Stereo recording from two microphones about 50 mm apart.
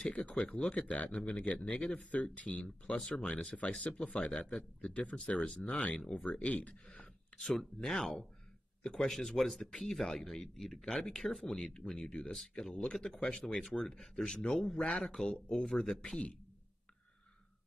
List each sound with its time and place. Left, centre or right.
0.1 s speech: left
2.0 s speech: left
3.5 s speech: centre
4.1 s speech: left
6.7 s a sound: centre
7.5 s speech: centre
15.0 s speech: centre